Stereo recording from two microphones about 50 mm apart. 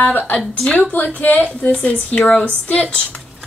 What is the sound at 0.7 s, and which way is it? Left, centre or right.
Speech, left.